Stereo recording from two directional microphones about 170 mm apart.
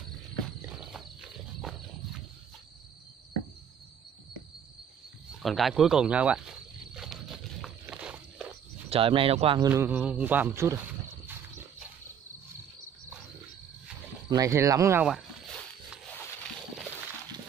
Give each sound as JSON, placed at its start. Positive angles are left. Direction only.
{"t": 0.7, "sound": "walk", "side_deg": -5}
{"t": 5.4, "sound": "snake", "side_deg": 0}
{"t": 7.8, "sound": "walk", "side_deg": -10}
{"t": 8.9, "sound": "speech", "side_deg": -30}
{"t": 9.6, "sound": "speech", "side_deg": -15}
{"t": 14.3, "sound": "speech", "side_deg": -20}